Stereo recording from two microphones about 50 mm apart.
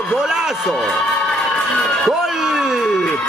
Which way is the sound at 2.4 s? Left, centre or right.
Centre.